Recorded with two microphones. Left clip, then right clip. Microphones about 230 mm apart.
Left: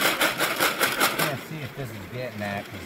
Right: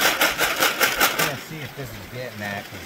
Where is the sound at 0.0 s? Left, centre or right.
Centre.